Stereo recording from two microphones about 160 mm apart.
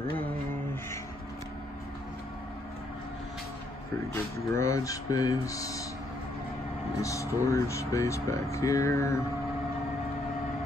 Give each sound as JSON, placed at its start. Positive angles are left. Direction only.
{"t": 4.1, "sound": "speech", "side_deg": 20}
{"t": 7.0, "sound": "speech", "side_deg": 20}